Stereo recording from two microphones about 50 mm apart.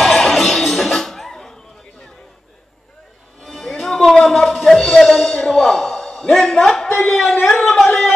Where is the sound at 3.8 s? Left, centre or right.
Centre.